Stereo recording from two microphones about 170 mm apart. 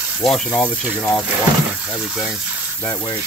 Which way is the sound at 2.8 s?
15° left (ahead or behind).